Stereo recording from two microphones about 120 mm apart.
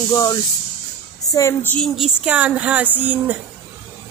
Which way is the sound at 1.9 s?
5° right (ahead or behind).